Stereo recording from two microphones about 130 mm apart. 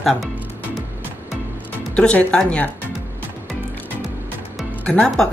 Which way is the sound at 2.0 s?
10° left (ahead or behind).